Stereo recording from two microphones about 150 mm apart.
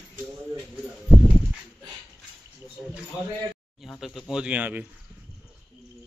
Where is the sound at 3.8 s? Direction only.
Centre (ahead or behind).